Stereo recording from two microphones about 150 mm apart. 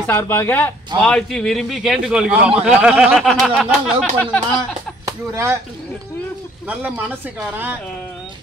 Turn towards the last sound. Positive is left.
turn(degrees=-15)  # may be behind; listen again after turning